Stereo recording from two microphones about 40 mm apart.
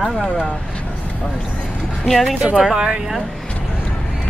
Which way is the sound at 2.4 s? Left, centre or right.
Right.